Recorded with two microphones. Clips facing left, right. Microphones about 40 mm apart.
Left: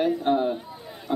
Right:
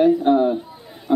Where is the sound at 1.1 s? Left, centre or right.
Centre.